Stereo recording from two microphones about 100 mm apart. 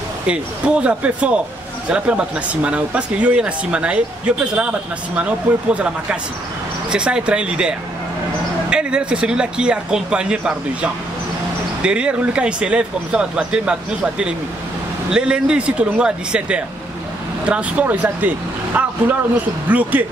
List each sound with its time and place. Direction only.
0.3 s speech: 10° right (ahead or behind)